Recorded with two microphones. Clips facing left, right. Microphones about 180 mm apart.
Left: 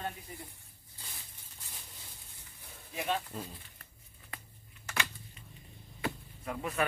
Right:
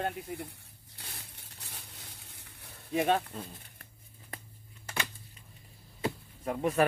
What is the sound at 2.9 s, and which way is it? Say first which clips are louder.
Speech: right 7 dB; 60° right (ahead or behind).